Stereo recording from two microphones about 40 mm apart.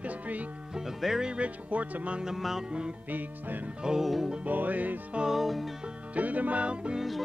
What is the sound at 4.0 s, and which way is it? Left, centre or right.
Music, centre.